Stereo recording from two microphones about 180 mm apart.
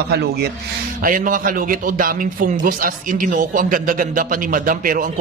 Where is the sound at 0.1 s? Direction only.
65° right (ahead or behind).